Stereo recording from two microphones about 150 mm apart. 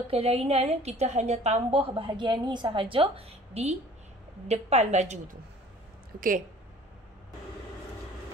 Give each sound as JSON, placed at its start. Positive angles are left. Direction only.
{"t": 0.1, "sound": "a woman's voice", "side_deg": -40}
{"t": 6.1, "sound": "speech", "side_deg": -65}